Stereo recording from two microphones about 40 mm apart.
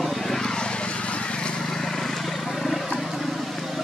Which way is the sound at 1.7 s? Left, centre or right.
Centre.